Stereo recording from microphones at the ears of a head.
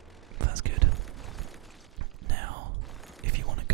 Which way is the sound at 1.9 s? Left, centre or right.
Right.